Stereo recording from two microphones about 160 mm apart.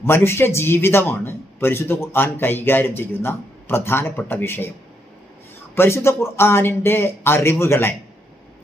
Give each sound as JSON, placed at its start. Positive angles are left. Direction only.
{"t": 0.0, "sound": "a man's voice", "side_deg": 15}
{"t": 5.8, "sound": "a man's voice", "side_deg": 15}